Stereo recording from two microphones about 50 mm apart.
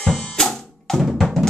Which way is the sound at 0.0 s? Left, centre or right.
Centre.